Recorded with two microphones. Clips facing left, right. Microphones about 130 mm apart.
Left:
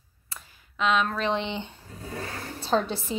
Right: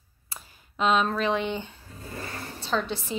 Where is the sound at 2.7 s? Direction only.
40° left (ahead or behind).